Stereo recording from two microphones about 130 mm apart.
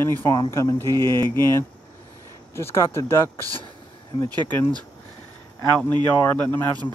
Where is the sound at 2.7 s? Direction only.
20° left (ahead or behind).